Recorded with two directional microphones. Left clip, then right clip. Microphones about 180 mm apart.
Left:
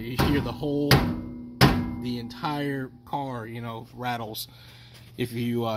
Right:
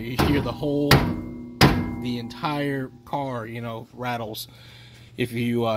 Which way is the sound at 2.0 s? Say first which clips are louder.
Right 3 dB; 5° right (ahead or behind).